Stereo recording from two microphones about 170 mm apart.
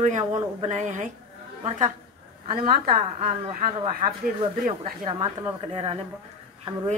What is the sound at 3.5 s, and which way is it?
Speech, 45° right (ahead or behind).